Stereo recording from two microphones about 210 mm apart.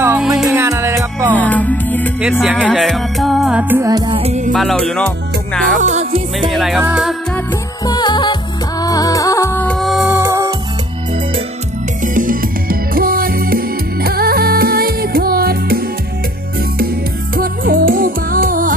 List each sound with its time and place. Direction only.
0.2 s music: centre (ahead or behind)
0.5 s music: 15° right (ahead or behind)
1.4 s music: 5° left (ahead or behind); by 4.5 s 30° right (ahead or behind)
4.5 s music: centre (ahead or behind)
5.8 s music: 35° right (ahead or behind)
6.5 s music: centre (ahead or behind)
7.3 s music: 20° left (ahead or behind); by 10.1 s centre (ahead or behind)
10.1 s music: 15° right (ahead or behind)
12.0 s music: 40° right (ahead or behind)
17.4 s music: 45° right (ahead or behind)